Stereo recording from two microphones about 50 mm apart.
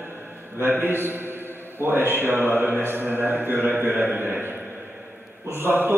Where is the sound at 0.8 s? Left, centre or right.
Right.